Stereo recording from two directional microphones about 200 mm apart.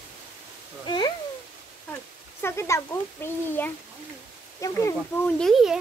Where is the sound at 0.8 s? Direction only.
20° left (ahead or behind).